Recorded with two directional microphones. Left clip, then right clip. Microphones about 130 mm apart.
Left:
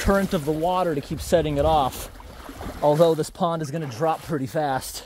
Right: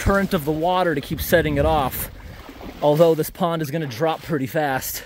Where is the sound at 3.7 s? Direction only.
50° right (ahead or behind).